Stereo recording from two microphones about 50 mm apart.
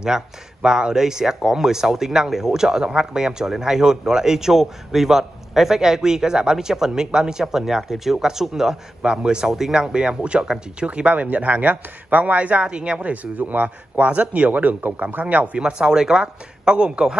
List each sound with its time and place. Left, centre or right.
0.0 s speech: centre; by 14.0 s right
14.0 s speech: right
15.6 s speech: centre